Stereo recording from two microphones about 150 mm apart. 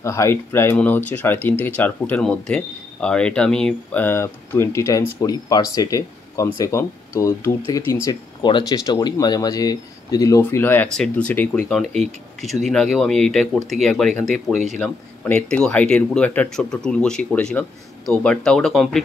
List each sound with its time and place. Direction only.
0.0 s speech: 20° left (ahead or behind); by 14.1 s centre (ahead or behind)
14.3 s speech: 50° right (ahead or behind)
14.8 s speech: 10° left (ahead or behind)